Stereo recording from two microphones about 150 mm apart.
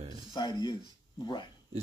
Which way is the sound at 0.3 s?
30° left (ahead or behind).